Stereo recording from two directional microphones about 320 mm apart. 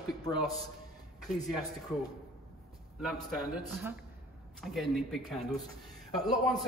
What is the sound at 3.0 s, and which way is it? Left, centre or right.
Speech, centre.